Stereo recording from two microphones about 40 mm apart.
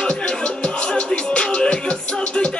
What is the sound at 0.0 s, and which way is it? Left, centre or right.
Music, left.